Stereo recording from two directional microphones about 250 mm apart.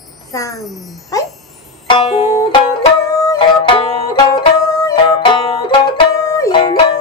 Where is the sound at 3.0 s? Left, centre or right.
Centre.